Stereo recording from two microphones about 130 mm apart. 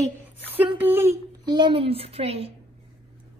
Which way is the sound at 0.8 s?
15° right (ahead or behind).